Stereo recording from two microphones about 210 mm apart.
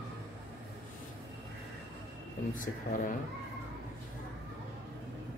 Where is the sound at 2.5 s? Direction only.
40° left (ahead or behind).